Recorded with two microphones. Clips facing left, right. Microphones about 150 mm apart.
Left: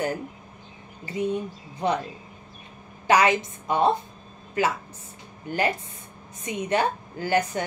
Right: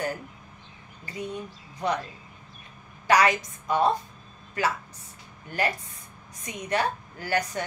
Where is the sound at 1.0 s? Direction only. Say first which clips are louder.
Left 8 dB; 25° left (ahead or behind).